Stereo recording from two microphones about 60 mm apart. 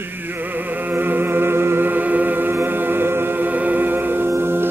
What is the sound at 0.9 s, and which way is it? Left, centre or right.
Music, right.